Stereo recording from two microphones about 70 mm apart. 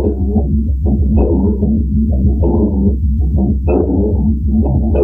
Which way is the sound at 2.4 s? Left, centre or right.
Centre.